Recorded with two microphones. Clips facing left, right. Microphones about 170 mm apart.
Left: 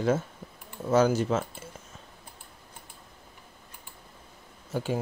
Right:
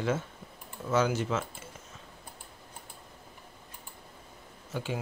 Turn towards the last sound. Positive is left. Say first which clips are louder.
# left 5 dB
turn(degrees=40)  # may be behind; listen again after turning